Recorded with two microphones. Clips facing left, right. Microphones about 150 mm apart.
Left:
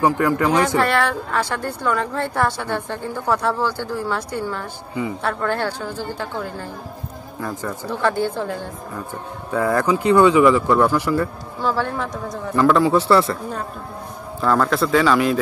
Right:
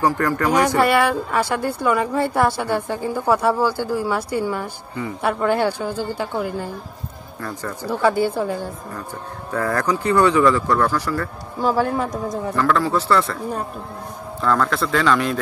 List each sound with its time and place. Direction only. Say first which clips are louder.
0.0 s speech: left 2 dB; 15° left (ahead or behind)
0.7 s a woman's voice: right 2 dB; 10° right (ahead or behind)
7.3 s speech: left 2 dB; 10° left (ahead or behind)
8.0 s a woman's voice: right 3 dB; 10° right (ahead or behind)
9.5 s speech: left 3 dB; 15° left (ahead or behind)
11.6 s a woman's voice: right 3 dB; 15° right (ahead or behind)
12.5 s speech: left 5 dB; 15° left (ahead or behind)
14.4 s a man's voice: left 2 dB; 5° left (ahead or behind)